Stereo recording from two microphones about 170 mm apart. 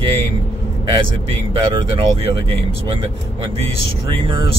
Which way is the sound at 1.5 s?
30° right (ahead or behind).